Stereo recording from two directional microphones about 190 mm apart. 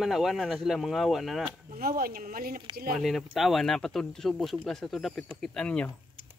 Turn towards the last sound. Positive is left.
turn(degrees=5)  # may be behind; listen again after turning